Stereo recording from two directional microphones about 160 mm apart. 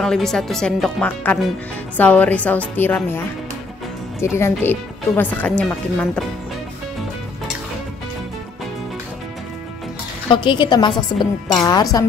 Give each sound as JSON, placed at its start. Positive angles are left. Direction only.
{"t": 0.0, "sound": "speech", "side_deg": 5}
{"t": 10.3, "sound": "a woman's voice", "side_deg": 30}